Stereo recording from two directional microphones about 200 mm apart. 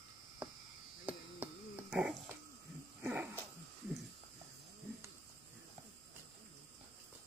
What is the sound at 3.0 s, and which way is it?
Dog, 10° right (ahead or behind).